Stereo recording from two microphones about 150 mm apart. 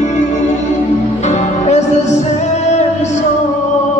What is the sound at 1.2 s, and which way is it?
Music, 50° left (ahead or behind).